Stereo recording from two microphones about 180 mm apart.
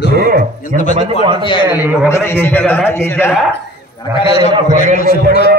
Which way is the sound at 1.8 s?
10° right (ahead or behind).